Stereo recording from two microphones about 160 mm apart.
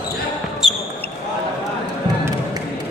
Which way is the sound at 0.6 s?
Centre (ahead or behind).